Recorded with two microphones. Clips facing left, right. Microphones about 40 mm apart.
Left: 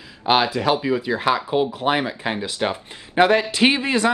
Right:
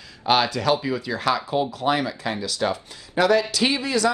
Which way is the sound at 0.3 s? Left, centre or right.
Centre.